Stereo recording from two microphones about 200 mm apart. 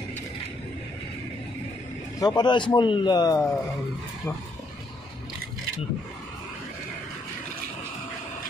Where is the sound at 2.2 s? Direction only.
20° left (ahead or behind).